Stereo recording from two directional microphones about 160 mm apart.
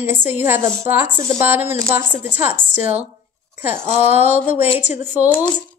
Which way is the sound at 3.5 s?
15° right (ahead or behind).